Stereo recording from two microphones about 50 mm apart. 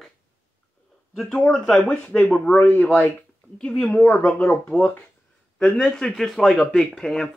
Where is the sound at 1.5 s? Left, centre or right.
Centre.